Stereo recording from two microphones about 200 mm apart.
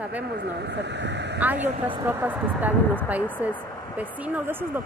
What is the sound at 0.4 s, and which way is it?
Speech, 60° right (ahead or behind).